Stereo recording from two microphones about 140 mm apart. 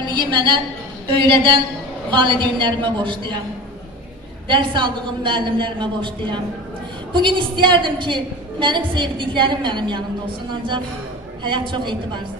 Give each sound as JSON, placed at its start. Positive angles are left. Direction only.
{"t": 0.0, "sound": "a woman's voice", "side_deg": -35}
{"t": 4.5, "sound": "a woman's voice", "side_deg": -35}
{"t": 11.4, "sound": "a woman's voice", "side_deg": -35}